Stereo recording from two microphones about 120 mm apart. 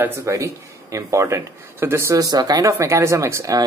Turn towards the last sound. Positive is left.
turn(degrees=-25)  # may be behind; listen again after turning